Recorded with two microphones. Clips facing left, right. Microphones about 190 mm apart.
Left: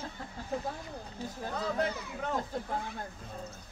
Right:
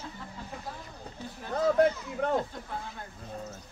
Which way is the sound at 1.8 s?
50° right (ahead or behind).